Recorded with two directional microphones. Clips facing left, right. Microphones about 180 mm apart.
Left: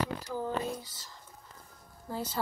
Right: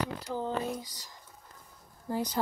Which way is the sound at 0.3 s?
15° right (ahead or behind).